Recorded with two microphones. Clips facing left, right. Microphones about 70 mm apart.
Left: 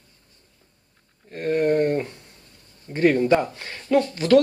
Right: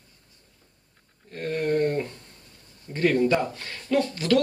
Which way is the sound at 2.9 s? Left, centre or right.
Left.